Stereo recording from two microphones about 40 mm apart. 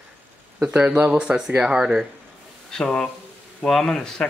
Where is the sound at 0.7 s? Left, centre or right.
Right.